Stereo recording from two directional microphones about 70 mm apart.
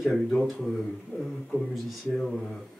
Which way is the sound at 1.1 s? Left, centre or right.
Left.